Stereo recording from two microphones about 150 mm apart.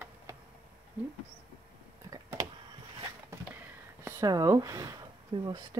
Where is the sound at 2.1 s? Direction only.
25° right (ahead or behind).